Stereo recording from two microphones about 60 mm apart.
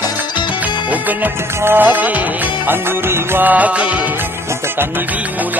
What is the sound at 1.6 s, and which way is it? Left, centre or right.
Music, right.